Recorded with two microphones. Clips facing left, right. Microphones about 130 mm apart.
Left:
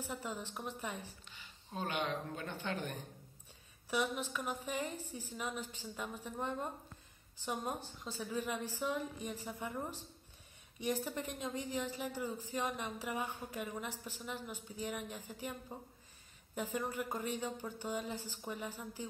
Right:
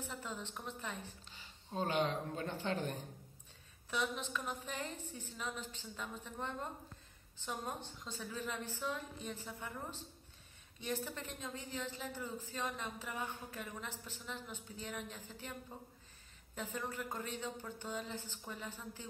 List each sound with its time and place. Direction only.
0.0 s a woman's voice: 10° left (ahead or behind)
1.2 s speech: 35° right (ahead or behind)
3.9 s a woman's voice: 10° left (ahead or behind)